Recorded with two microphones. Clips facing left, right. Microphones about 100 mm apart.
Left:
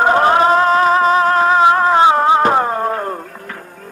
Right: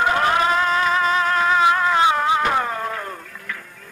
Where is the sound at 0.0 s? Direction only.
35° left (ahead or behind).